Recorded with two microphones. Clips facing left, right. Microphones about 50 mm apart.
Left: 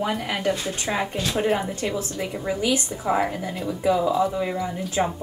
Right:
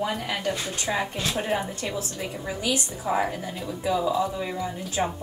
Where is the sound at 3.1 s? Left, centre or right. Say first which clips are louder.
Left 3 dB; left.